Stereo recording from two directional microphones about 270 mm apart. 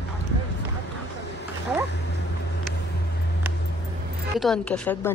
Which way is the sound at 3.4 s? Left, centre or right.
Centre.